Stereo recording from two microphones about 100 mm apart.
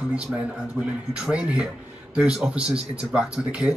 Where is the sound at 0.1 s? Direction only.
10° right (ahead or behind).